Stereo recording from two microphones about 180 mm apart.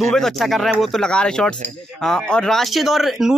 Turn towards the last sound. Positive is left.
turn(degrees=0)  # may be behind; listen again after turning